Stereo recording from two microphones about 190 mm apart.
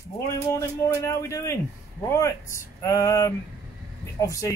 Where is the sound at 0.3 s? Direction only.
15° left (ahead or behind).